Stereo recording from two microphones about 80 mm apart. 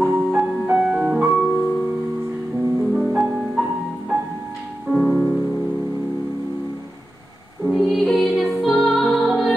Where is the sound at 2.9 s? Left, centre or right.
Centre.